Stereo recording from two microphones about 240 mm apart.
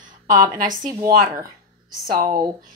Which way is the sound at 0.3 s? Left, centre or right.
Right.